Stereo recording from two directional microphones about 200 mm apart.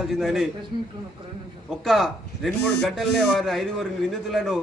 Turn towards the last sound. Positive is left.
turn(degrees=0)  # may be behind; listen again after turning